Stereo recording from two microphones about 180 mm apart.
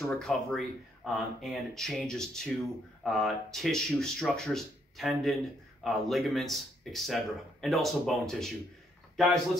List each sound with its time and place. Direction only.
0.2 s speech: centre (ahead or behind)